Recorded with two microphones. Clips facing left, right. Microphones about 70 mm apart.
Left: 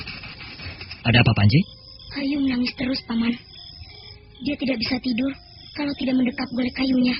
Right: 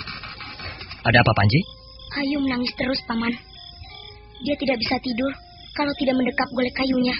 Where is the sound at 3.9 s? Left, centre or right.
Right.